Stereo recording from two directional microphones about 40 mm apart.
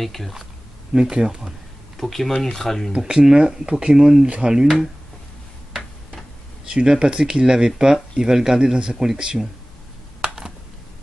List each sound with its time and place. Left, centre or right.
0.0 s speech: centre
0.9 s speech: centre
2.0 s speech: centre
3.1 s speech: right
6.6 s speech: centre
10.2 s computer keyboard: centre